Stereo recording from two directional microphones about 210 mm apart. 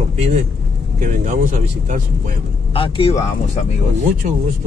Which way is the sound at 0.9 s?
35° right (ahead or behind).